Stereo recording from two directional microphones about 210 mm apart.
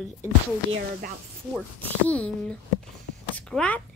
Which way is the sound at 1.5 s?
5° left (ahead or behind).